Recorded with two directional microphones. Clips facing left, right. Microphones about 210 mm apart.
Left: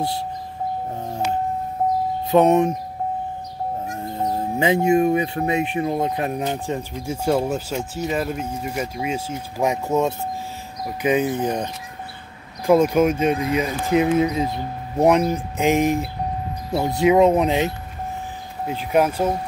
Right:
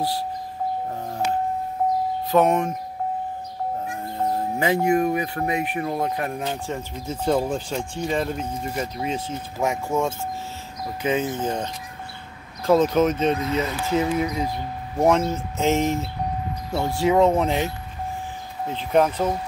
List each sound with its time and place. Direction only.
2.3 s speech: 20° left (ahead or behind)
4.2 s speech: 20° left (ahead or behind)